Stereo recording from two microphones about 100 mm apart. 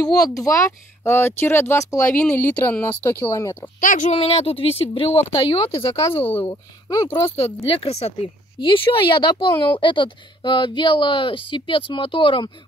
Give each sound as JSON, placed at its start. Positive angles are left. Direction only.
{"t": 0.0, "sound": "speech", "side_deg": 40}
{"t": 4.1, "sound": "speech", "side_deg": 85}
{"t": 6.5, "sound": "speech", "side_deg": 35}
{"t": 7.6, "sound": "speech", "side_deg": 80}
{"t": 8.5, "sound": "speech", "side_deg": 55}